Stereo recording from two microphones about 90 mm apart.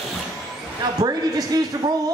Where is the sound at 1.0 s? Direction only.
45° right (ahead or behind).